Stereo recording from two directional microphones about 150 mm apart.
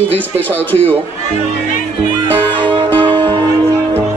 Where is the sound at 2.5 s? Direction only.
30° right (ahead or behind).